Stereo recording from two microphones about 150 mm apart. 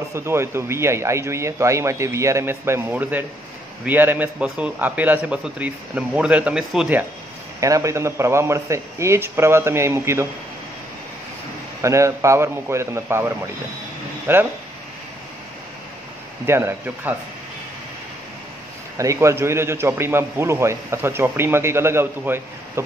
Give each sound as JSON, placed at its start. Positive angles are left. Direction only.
{"t": 0.1, "sound": "a man's voice", "side_deg": -15}
{"t": 7.6, "sound": "a man's voice", "side_deg": -20}
{"t": 11.8, "sound": "a man's voice", "side_deg": -20}
{"t": 16.4, "sound": "a man's voice", "side_deg": -15}
{"t": 18.9, "sound": "a man's voice", "side_deg": -20}